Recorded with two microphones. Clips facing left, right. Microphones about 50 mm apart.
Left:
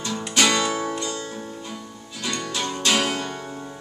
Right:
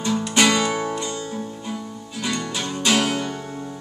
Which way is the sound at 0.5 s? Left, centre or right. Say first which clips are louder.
Right 2 dB; centre.